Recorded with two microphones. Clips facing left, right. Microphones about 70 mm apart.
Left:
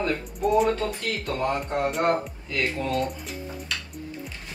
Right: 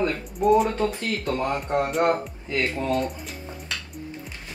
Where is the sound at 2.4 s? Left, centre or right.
Right.